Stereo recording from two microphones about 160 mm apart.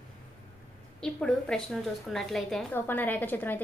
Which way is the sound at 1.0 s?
5° left (ahead or behind).